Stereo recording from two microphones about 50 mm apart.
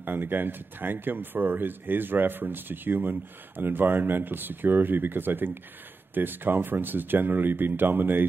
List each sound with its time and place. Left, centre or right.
0.0 s speech: right